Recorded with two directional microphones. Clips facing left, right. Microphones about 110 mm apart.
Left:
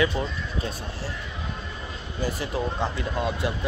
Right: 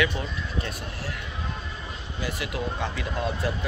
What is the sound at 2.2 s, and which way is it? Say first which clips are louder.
Speech: left 3 dB; 35° left (ahead or behind).